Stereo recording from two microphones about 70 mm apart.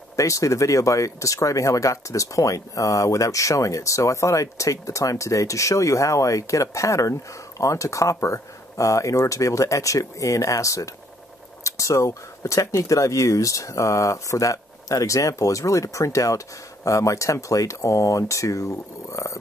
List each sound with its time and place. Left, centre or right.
0.1 s speech: left